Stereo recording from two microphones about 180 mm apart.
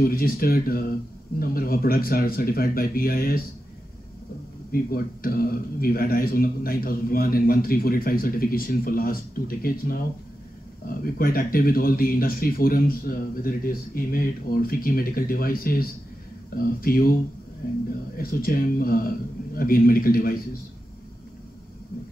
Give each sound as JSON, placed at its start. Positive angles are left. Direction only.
{"t": 0.0, "sound": "a man's voice", "side_deg": 55}
{"t": 4.6, "sound": "a man's voice", "side_deg": 55}